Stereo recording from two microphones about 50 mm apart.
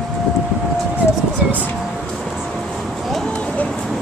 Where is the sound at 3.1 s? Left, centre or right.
Centre.